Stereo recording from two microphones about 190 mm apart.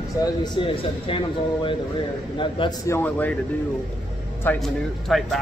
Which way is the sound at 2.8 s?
10° left (ahead or behind).